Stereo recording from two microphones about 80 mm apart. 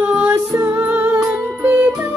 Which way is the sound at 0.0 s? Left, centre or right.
Right.